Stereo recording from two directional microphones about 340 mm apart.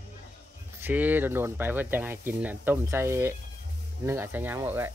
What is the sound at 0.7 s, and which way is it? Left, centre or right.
Speech, centre.